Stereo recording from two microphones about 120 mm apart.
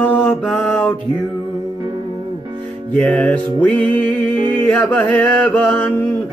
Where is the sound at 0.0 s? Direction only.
10° left (ahead or behind).